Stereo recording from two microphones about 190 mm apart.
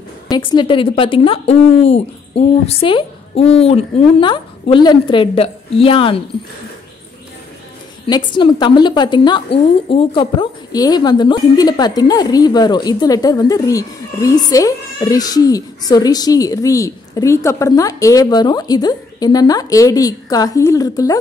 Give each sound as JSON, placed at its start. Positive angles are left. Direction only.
{"t": 0.3, "sound": "a woman's voice", "side_deg": 25}
{"t": 8.1, "sound": "a woman's voice", "side_deg": 25}